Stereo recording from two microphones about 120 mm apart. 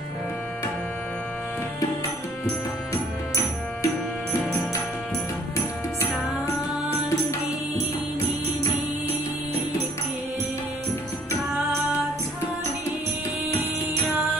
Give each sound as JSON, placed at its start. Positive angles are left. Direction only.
{"t": 2.9, "sound": "music", "side_deg": 25}